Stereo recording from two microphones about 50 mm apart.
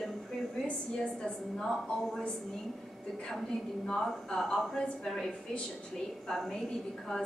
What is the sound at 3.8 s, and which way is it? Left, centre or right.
A woman's voice, centre.